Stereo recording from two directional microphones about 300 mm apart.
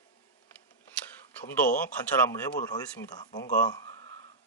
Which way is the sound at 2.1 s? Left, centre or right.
Centre.